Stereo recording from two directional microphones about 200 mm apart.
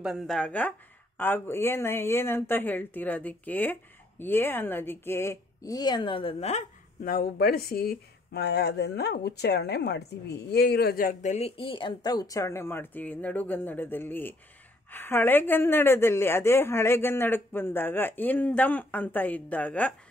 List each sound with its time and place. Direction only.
0.0 s a woman's voice: centre (ahead or behind)